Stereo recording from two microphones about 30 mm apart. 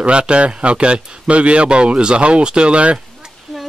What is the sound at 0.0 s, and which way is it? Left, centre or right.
Speech, right.